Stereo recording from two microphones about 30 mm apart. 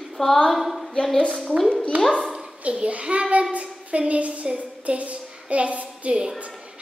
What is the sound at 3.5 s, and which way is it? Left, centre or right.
Child singing, right.